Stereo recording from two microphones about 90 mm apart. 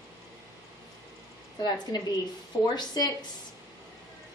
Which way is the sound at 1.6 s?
50° left (ahead or behind).